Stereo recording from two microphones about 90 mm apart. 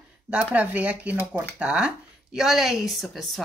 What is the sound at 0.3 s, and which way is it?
Speech, 15° right (ahead or behind).